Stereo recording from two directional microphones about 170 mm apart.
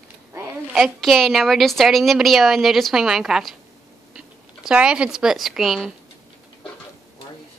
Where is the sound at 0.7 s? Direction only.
Centre (ahead or behind).